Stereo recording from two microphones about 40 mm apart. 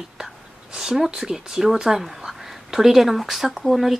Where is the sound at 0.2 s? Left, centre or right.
Centre.